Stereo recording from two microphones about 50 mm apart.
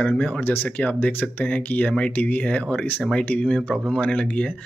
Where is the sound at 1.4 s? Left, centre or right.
Left.